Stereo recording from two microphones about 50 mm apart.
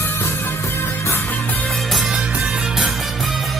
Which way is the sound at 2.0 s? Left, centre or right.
Centre.